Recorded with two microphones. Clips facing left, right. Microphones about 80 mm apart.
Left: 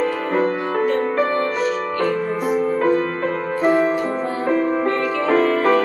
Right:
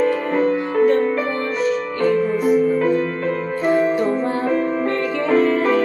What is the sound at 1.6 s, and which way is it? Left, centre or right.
Music, left.